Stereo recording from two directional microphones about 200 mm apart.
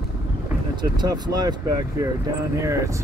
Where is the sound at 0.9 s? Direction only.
20° right (ahead or behind).